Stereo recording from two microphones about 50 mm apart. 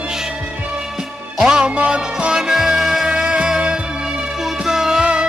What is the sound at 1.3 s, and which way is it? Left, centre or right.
Music, centre.